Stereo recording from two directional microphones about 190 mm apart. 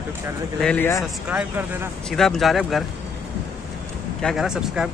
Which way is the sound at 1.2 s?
10° right (ahead or behind).